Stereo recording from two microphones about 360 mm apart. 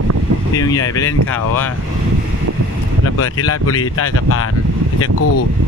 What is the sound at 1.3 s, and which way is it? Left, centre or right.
Speech, left.